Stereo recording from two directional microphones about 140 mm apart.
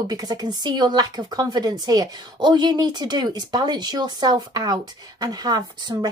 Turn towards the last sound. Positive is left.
turn(degrees=-30)  # may be behind; listen again after turning